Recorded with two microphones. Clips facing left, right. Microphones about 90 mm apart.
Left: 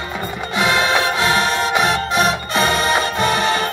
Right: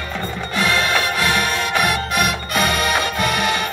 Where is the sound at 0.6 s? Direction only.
25° left (ahead or behind).